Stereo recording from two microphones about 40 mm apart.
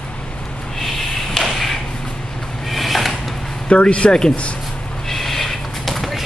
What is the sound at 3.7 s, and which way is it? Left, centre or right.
Speech, left.